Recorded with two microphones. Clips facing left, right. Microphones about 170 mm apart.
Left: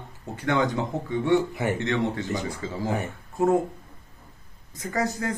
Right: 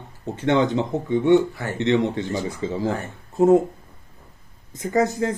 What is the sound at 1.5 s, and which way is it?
Speech, 20° left (ahead or behind).